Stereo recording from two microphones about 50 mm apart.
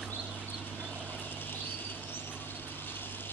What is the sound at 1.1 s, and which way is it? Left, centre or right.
Vehicle, left.